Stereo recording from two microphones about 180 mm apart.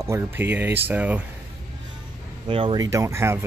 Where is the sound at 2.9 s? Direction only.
15° right (ahead or behind).